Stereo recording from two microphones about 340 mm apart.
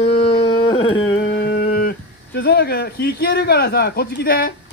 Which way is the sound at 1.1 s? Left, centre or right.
Left.